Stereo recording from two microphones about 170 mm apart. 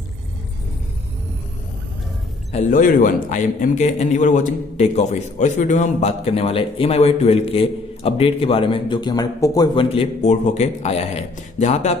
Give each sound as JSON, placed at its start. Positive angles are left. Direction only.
{"t": 2.5, "sound": "a man's voice", "side_deg": 50}
{"t": 9.8, "sound": "a man's voice", "side_deg": 35}